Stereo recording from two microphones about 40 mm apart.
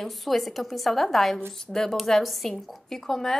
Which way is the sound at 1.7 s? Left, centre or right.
Centre.